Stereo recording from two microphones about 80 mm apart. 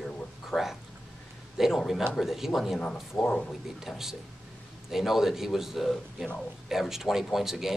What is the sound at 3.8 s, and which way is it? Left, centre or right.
Speech, centre.